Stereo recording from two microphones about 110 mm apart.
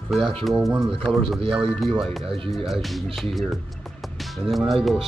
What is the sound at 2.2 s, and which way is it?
Speech, 55° right (ahead or behind).